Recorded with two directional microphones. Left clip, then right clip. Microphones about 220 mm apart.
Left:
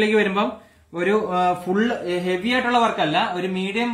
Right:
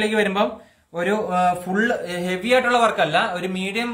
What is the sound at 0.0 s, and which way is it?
A man's voice, 50° right (ahead or behind).